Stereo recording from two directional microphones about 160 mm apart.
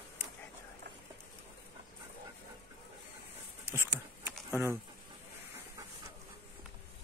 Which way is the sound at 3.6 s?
15° right (ahead or behind).